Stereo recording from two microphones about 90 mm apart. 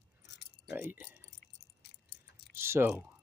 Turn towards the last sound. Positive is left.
turn(degrees=-25)  # may be behind; listen again after turning